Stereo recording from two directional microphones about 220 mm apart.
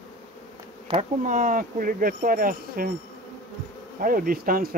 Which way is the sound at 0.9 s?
35° right (ahead or behind).